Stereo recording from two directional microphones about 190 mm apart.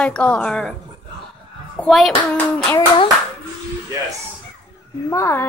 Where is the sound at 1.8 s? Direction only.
Centre (ahead or behind).